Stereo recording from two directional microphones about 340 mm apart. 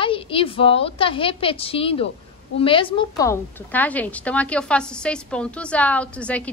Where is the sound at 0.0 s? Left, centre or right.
Centre.